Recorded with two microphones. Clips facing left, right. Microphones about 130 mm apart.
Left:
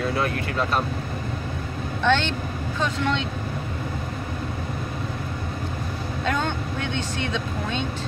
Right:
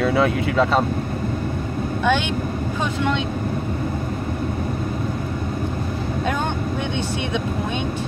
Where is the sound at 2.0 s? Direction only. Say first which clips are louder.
Right 1 dB; 10° right (ahead or behind).